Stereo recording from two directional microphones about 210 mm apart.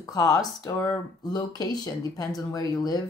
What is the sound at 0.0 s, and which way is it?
Speech, 15° left (ahead or behind).